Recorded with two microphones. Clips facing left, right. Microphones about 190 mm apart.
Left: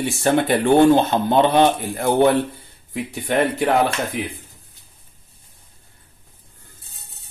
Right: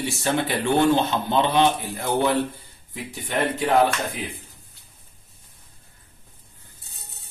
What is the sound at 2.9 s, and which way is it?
Speech, 65° left (ahead or behind).